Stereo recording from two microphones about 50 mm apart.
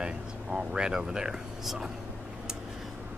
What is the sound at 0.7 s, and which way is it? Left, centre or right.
Speech, centre.